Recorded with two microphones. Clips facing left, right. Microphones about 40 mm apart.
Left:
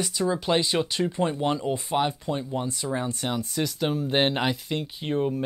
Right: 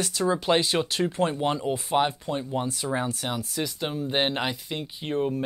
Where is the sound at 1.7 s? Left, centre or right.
Centre.